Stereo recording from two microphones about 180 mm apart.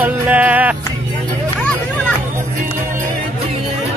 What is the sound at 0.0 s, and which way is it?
Music, 10° right (ahead or behind).